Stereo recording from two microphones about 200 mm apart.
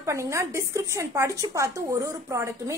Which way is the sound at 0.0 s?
15° right (ahead or behind).